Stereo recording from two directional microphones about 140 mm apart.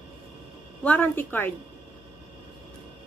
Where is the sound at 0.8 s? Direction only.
10° left (ahead or behind).